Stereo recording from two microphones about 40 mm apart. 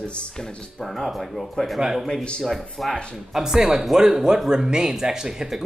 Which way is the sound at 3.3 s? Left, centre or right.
Centre.